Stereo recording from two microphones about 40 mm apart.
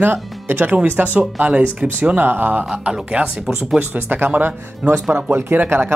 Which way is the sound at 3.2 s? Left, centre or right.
Right.